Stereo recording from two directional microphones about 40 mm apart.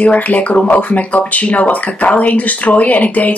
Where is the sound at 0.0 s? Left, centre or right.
Left.